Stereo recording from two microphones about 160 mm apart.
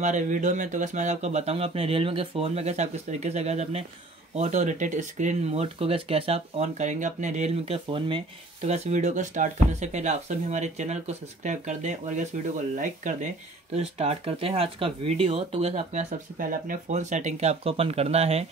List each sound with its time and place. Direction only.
0.0 s speech: 50° right (ahead or behind)
13.7 s speech: 40° right (ahead or behind)